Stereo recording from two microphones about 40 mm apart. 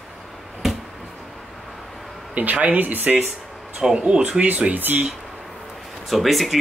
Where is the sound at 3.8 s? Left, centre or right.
Right.